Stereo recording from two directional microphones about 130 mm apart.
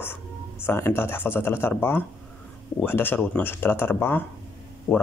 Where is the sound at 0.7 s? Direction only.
20° left (ahead or behind).